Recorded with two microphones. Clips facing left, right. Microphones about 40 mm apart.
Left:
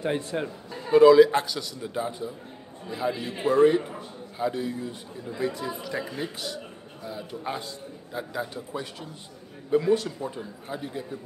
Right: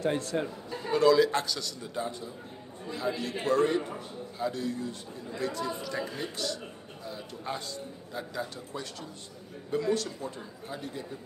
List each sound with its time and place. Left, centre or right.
0.0 s a man's voice: centre